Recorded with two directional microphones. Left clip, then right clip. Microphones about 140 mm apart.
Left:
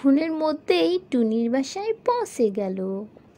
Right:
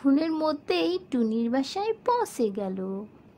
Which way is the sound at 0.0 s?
20° left (ahead or behind).